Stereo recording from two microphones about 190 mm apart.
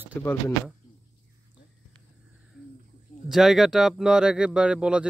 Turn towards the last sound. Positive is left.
turn(degrees=-5)  # may be behind; listen again after turning